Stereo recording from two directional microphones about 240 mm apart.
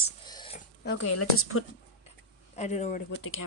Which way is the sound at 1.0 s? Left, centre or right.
Left.